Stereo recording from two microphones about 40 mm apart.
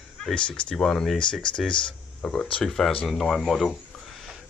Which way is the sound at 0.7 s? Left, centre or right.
Centre.